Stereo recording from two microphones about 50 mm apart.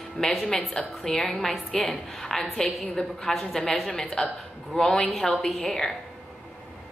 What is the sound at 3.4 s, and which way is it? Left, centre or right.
A woman's voice, centre.